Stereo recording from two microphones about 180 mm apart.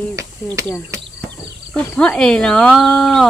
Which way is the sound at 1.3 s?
5° left (ahead or behind).